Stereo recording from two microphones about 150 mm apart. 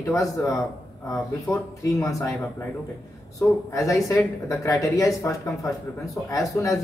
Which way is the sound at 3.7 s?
20° left (ahead or behind).